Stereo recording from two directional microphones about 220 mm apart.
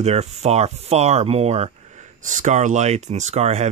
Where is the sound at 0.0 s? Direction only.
30° right (ahead or behind).